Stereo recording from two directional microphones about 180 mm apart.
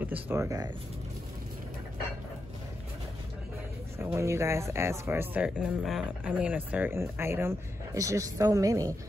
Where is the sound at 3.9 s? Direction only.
15° right (ahead or behind).